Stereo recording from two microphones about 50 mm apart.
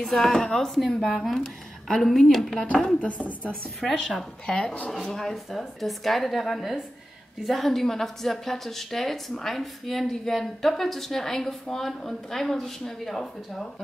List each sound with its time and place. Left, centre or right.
0.2 s a woman's voice: centre
3.0 s speech: left
3.8 s a woman's voice: centre
4.5 s speech: centre
5.0 s a woman's voice: centre